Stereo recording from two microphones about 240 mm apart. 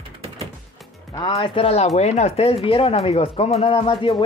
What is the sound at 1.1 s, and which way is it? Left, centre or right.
Speech, centre.